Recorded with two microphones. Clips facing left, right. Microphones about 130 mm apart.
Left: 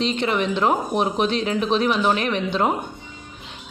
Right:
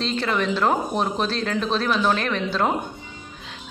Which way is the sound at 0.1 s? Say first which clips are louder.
Left 1 dB; 20° left (ahead or behind).